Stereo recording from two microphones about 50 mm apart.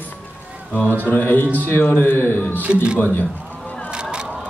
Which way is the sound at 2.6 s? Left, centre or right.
Right.